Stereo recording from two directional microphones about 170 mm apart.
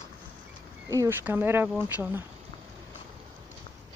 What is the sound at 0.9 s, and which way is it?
Speech, 15° right (ahead or behind).